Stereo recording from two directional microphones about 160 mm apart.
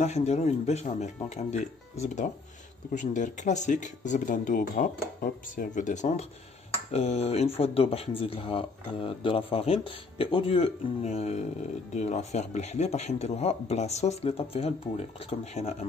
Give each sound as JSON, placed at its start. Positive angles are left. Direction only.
{"t": 0.0, "sound": "speech", "side_deg": 45}